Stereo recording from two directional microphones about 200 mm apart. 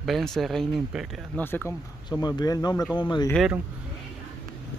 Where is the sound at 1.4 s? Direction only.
10° left (ahead or behind).